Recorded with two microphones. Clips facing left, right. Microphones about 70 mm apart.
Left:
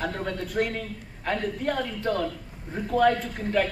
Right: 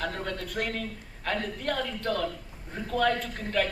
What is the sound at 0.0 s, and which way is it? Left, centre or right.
A man's voice, centre.